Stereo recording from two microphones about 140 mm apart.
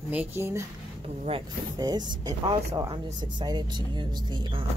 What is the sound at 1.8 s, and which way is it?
Speech, 30° right (ahead or behind).